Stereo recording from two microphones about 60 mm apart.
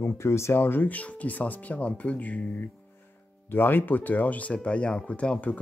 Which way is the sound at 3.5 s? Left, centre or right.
Left.